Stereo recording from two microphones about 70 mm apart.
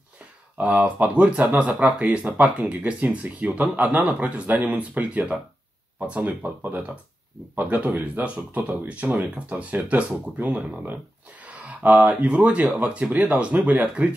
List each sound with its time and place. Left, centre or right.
0.6 s speech: centre